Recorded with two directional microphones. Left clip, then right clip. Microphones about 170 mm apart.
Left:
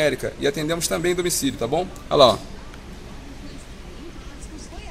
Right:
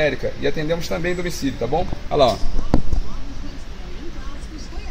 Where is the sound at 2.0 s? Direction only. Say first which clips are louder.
Left 2 dB; 30° left (ahead or behind).